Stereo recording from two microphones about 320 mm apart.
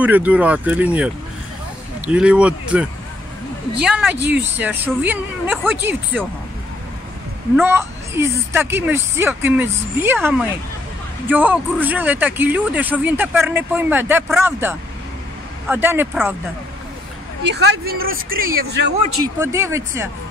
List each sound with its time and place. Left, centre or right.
0.0 s speech: centre
7.5 s speech: centre
17.4 s speech: right
19.2 s speech: centre